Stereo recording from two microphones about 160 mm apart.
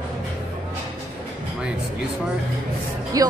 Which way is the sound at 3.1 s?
20° right (ahead or behind).